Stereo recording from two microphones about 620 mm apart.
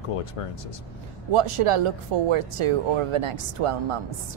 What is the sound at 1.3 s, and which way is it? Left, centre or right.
Speech, right.